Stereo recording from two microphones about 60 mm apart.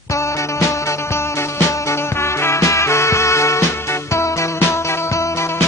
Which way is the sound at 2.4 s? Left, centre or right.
Left.